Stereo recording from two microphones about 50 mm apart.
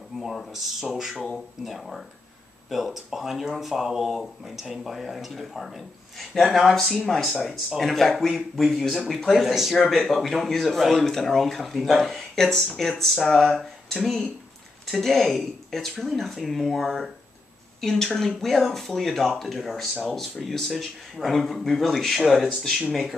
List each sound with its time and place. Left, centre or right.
0.5 s speech: centre